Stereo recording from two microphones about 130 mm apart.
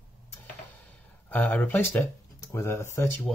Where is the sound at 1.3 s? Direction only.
10° left (ahead or behind).